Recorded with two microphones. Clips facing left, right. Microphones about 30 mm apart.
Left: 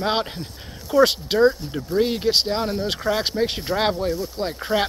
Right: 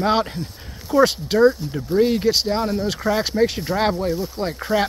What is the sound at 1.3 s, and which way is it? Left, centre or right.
Speech, left.